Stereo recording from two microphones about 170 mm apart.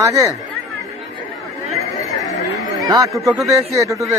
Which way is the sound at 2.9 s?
20° right (ahead or behind).